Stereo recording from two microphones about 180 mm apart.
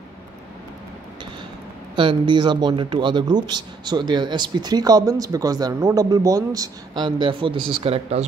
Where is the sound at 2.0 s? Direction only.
25° right (ahead or behind).